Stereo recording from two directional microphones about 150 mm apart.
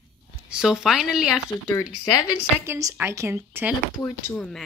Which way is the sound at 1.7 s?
25° left (ahead or behind).